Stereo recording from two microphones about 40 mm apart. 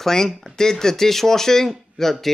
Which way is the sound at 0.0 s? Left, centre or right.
Centre.